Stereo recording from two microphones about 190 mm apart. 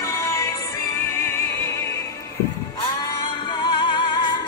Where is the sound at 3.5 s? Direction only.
25° left (ahead or behind).